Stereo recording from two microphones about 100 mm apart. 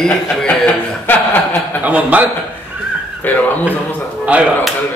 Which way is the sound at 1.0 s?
20° left (ahead or behind).